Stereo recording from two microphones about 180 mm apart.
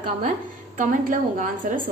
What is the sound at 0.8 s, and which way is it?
A woman's voice, 50° right (ahead or behind).